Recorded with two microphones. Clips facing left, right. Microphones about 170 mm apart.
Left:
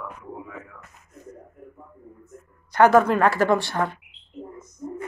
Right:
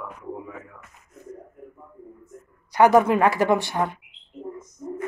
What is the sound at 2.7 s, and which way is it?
Speech, 15° right (ahead or behind).